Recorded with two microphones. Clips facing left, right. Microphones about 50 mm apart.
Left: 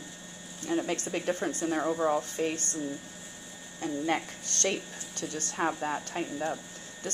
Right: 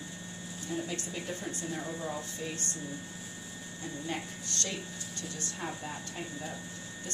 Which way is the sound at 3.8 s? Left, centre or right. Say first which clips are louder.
Left 8 dB; left.